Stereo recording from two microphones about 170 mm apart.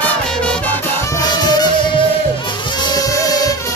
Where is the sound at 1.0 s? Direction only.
20° left (ahead or behind).